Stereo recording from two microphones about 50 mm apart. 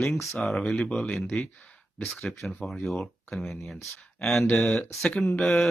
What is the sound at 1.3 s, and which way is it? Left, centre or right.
Speech, left.